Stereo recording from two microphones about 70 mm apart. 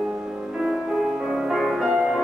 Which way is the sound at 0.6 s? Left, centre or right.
Centre.